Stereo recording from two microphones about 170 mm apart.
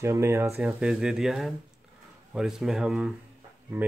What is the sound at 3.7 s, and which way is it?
Speech, 15° right (ahead or behind).